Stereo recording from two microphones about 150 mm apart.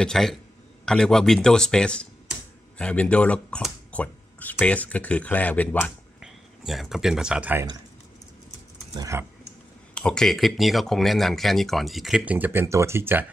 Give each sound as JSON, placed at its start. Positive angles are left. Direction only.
{"t": 0.0, "sound": "speech", "side_deg": 5}
{"t": 6.2, "sound": "speech", "side_deg": 0}
{"t": 8.9, "sound": "speech", "side_deg": -25}
{"t": 9.9, "sound": "speech", "side_deg": 5}